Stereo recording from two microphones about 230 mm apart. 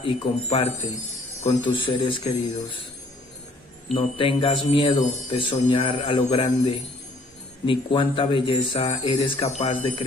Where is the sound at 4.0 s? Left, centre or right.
Left.